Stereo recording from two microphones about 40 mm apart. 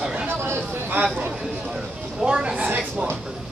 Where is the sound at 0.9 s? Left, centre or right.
Right.